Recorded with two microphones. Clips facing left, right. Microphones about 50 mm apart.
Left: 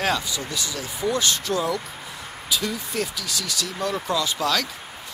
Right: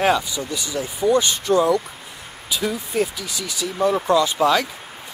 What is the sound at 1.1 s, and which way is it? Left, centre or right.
Speech, centre.